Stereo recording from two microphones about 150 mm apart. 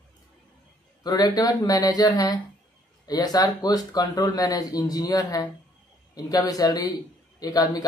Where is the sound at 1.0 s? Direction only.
25° left (ahead or behind).